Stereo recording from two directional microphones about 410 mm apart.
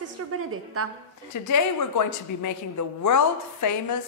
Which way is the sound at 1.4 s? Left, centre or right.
Left.